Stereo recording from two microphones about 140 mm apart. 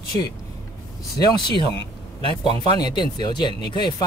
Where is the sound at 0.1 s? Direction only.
50° right (ahead or behind).